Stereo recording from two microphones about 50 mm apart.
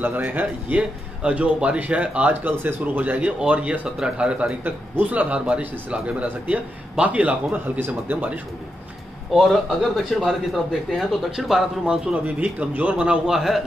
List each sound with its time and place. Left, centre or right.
0.0 s speech: right
0.7 s speech: right
4.6 s speech: right
7.8 s speech: right
9.3 s speech: centre
11.8 s speech: right
13.3 s speech: centre